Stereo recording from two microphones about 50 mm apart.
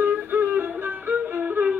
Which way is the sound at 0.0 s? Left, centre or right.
Right.